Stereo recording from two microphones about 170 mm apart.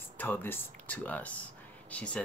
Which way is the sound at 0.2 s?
10° left (ahead or behind).